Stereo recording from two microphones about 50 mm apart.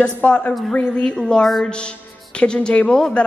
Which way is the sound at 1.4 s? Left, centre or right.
Centre.